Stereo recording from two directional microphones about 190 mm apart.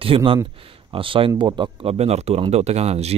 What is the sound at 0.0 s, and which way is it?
A man's voice, 30° right (ahead or behind).